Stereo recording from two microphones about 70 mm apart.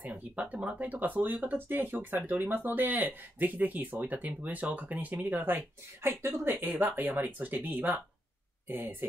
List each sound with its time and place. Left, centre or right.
0.4 s speech: centre
6.0 s speech: right
6.8 s speech: right